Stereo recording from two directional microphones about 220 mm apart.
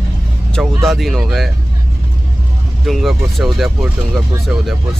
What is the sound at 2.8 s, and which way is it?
Speech, centre (ahead or behind).